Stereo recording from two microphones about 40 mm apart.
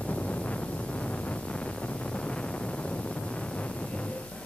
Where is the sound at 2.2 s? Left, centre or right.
Left.